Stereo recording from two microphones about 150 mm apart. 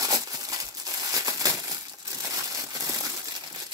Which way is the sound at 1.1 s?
25° right (ahead or behind).